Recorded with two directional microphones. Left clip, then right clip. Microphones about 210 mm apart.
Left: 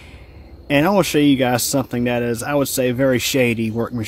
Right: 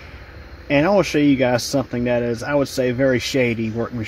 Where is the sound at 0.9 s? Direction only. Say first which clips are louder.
Left 1 dB; 35° left (ahead or behind).